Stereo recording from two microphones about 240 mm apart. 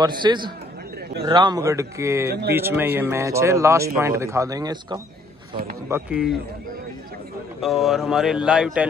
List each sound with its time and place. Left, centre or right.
0.0 s a man's voice: centre
7.6 s speech: centre